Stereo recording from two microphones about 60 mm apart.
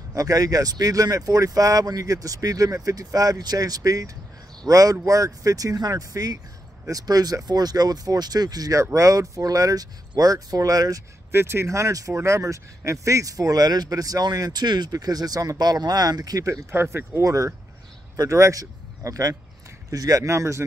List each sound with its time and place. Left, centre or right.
0.1 s speech: right
8.9 s speech: right
11.3 s speech: right
12.1 s speech: right
16.7 s speech: right
17.2 s speech: right